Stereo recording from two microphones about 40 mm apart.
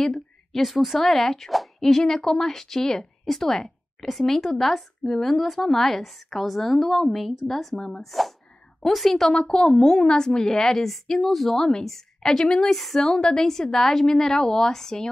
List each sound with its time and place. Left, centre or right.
0.0 s speech: centre
7.7 s speech: centre
8.0 s speech: centre
9.3 s speech: centre
12.3 s a woman's voice: left
12.6 s speech: centre